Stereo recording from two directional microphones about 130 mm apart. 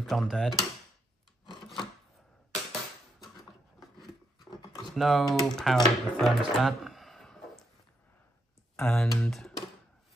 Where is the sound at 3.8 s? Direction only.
Centre (ahead or behind).